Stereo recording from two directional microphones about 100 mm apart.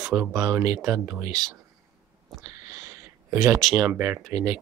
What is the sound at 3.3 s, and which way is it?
Speech, 30° right (ahead or behind).